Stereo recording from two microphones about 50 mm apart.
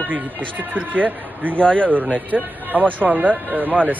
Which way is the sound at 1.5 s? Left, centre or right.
Left.